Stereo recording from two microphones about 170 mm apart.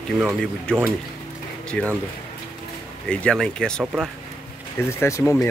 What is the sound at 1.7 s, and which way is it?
Speech, 5° left (ahead or behind).